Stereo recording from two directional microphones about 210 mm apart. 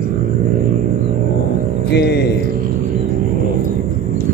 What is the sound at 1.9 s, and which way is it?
Music, 50° left (ahead or behind).